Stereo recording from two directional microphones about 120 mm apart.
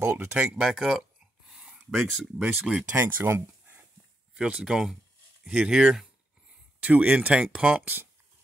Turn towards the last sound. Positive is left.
turn(degrees=-5)  # may be behind; listen again after turning